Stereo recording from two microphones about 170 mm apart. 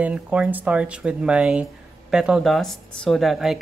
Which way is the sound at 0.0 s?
10° right (ahead or behind).